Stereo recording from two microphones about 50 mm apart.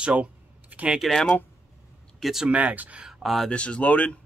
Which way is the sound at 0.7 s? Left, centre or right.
Right.